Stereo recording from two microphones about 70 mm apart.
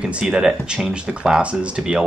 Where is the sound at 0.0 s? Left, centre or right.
Centre.